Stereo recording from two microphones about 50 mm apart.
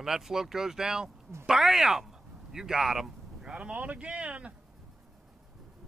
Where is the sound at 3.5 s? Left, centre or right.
Centre.